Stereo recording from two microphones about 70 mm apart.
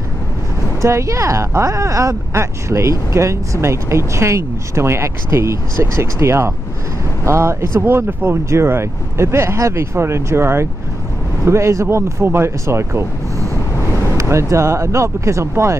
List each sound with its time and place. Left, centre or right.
0.7 s speech: right
14.1 s speech: right